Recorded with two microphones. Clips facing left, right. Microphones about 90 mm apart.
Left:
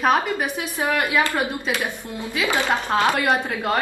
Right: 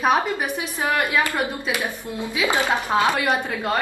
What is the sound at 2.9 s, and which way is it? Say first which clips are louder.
Speech: even; 5° right (ahead or behind).